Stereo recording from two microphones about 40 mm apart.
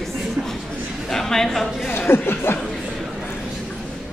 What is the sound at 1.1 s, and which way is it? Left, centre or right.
Speech, centre.